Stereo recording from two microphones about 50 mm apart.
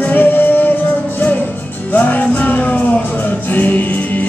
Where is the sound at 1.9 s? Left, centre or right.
Left.